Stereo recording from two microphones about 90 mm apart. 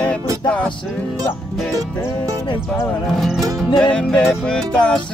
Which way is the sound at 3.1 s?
Centre (ahead or behind).